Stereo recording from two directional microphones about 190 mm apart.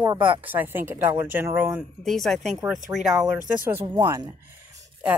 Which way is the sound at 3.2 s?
15° right (ahead or behind).